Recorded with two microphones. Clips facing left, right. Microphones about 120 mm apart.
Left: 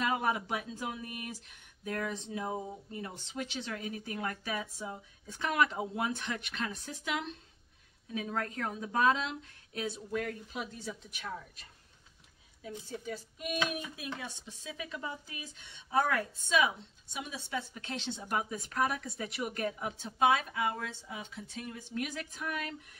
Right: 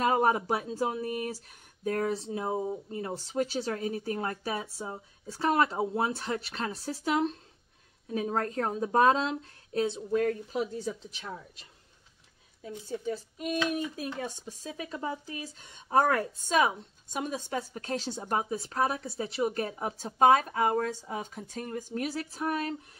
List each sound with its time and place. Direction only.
0.0 s speech: 40° right (ahead or behind)
12.6 s speech: 35° right (ahead or behind)